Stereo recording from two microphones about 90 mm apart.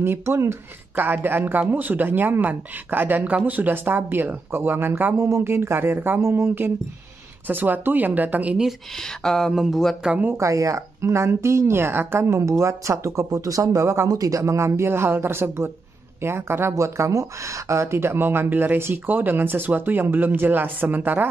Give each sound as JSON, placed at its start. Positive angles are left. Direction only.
{"t": 0.0, "sound": "speech", "side_deg": -25}
{"t": 8.6, "sound": "speech", "side_deg": 5}
{"t": 10.0, "sound": "speech", "side_deg": -15}
{"t": 10.3, "sound": "speech", "side_deg": -35}